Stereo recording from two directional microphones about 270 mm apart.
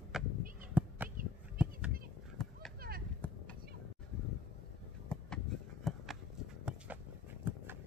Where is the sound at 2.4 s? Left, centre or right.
Centre.